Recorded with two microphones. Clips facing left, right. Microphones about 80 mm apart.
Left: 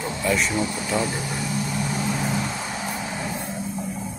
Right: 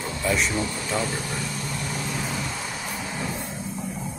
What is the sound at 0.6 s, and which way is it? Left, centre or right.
Speech, centre.